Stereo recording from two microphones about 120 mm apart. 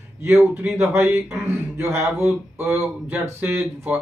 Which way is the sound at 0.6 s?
20° right (ahead or behind).